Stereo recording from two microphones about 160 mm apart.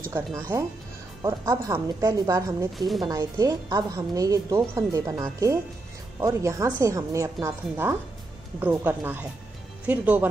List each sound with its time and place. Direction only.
0.4 s speech: 20° right (ahead or behind)